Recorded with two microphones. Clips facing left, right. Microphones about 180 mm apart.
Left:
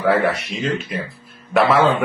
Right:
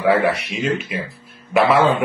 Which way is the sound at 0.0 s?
10° right (ahead or behind).